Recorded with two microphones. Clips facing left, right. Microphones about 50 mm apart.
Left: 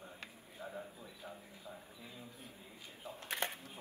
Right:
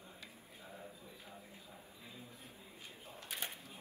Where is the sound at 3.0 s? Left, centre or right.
Left.